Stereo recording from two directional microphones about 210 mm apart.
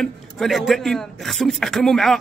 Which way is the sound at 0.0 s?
Centre (ahead or behind).